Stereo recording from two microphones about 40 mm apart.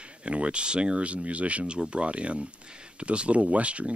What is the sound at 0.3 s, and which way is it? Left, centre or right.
Speech, right.